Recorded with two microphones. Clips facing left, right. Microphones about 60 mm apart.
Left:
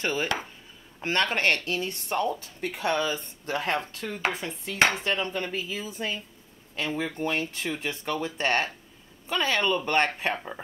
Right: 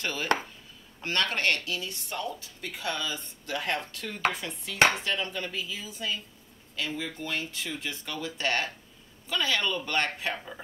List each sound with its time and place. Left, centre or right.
0.0 s a woman's voice: left